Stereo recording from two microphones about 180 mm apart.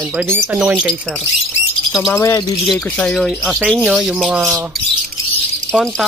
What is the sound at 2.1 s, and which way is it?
Speech, 20° left (ahead or behind).